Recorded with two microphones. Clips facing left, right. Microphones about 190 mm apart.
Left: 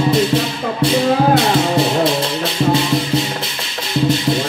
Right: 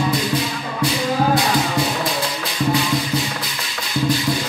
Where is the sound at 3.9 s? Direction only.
25° left (ahead or behind).